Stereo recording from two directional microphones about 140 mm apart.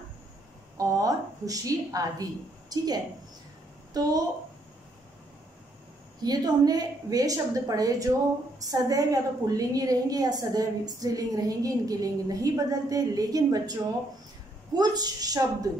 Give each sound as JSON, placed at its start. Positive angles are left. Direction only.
{"t": 0.7, "sound": "a sound", "side_deg": -25}
{"t": 2.7, "sound": "a woman's voice", "side_deg": -30}
{"t": 6.2, "sound": "a woman's voice", "side_deg": -30}
{"t": 14.8, "sound": "a woman's voice", "side_deg": -30}